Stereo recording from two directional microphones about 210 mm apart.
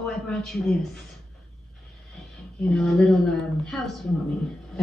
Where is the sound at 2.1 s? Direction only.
5° left (ahead or behind).